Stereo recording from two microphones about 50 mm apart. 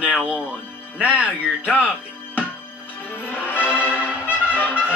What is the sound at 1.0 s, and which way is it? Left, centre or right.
Speech, right.